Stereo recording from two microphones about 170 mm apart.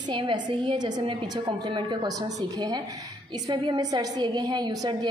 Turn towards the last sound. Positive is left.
turn(degrees=-25)  # may be behind; listen again after turning